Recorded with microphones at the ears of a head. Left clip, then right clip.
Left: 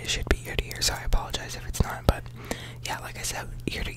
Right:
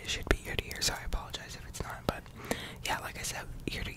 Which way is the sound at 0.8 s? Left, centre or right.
Left.